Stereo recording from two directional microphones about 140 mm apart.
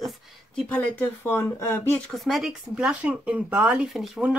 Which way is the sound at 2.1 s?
Centre (ahead or behind).